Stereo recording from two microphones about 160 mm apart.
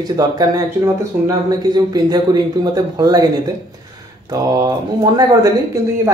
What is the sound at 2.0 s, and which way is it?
Speech, 25° right (ahead or behind).